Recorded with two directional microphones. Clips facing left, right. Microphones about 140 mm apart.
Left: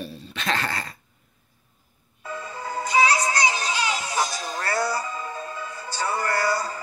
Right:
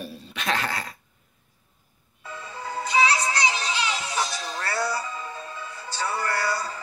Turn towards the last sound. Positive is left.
turn(degrees=45)  # may be behind; listen again after turning